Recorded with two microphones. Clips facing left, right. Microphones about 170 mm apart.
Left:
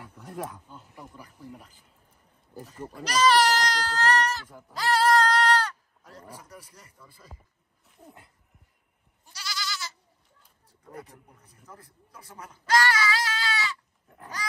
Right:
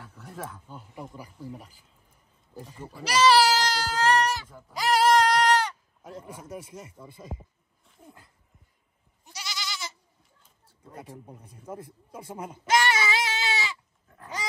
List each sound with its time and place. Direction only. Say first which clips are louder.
0.7 s speech: right 5 dB; 10° right (ahead or behind)
4.5 s speech: left 1 dB; 10° left (ahead or behind)
4.7 s goat: right 1 dB; 15° right (ahead or behind)
6.4 s speech: right 9 dB; 25° right (ahead or behind)
9.2 s goat: right 1 dB; 20° right (ahead or behind)
11.0 s speech: right 3 dB; 30° right (ahead or behind)